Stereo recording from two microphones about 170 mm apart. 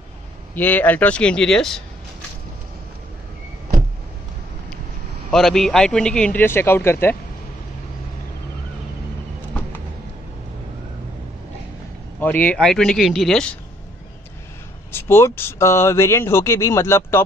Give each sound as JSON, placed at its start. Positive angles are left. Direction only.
{"t": 0.6, "sound": "speech", "side_deg": 10}
{"t": 5.3, "sound": "a man's voice", "side_deg": 0}
{"t": 12.2, "sound": "a man's voice", "side_deg": 10}
{"t": 14.9, "sound": "speech", "side_deg": 15}